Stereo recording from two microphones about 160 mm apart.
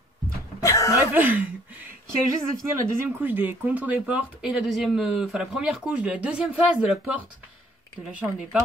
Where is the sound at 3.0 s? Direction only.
10° right (ahead or behind).